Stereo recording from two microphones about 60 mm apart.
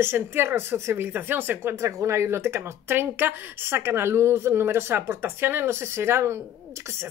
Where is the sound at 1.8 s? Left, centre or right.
Right.